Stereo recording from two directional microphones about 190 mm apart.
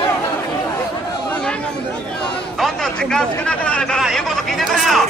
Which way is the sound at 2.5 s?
Centre (ahead or behind).